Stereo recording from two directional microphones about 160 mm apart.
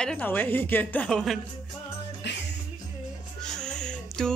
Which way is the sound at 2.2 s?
90° left.